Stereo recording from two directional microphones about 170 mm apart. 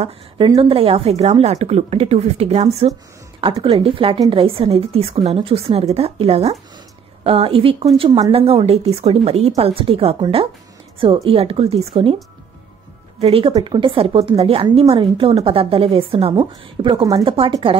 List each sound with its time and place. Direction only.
0.6 s a woman's voice: 30° right (ahead or behind)
13.2 s a woman's voice: 35° right (ahead or behind)